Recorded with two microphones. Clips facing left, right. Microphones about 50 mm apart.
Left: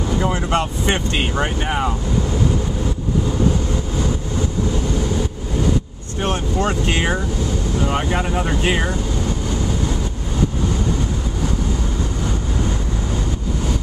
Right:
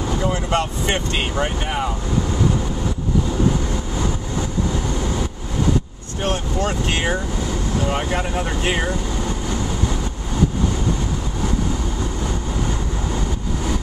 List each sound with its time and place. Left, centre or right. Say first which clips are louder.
0.2 s speech: left 1 dB; centre
6.2 s speech: left 2 dB; left; by 8.9 s centre